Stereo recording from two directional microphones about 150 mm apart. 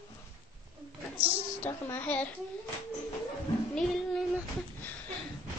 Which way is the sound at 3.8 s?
5° left (ahead or behind).